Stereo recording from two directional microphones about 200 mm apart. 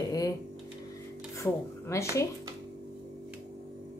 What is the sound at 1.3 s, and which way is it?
Speech, 15° left (ahead or behind).